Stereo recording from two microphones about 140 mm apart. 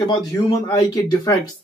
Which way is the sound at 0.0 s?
25° left (ahead or behind).